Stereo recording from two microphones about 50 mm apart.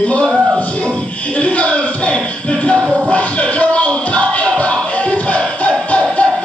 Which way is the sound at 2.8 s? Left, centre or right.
Centre.